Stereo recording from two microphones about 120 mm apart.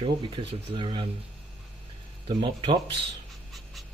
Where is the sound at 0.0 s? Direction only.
50° right (ahead or behind).